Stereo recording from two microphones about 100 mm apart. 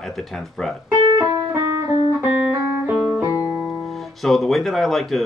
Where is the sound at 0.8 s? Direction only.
30° right (ahead or behind).